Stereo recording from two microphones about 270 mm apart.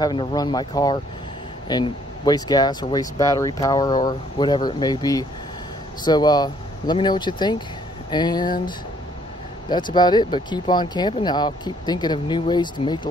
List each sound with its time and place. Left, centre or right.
0.0 s speech: centre